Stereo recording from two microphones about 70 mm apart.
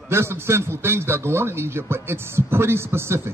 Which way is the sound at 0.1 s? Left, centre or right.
Right.